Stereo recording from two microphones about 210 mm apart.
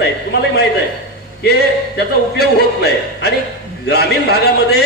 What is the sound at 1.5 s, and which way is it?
A man's voice, 50° left (ahead or behind).